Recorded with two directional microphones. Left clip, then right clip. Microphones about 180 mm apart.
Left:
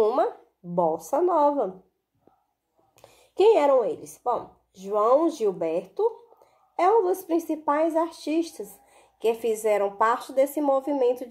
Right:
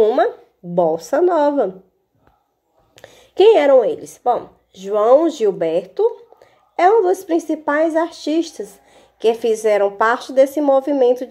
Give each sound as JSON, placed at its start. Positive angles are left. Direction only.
{"t": 0.7, "sound": "a woman's voice", "side_deg": -15}
{"t": 3.0, "sound": "a woman's voice", "side_deg": -10}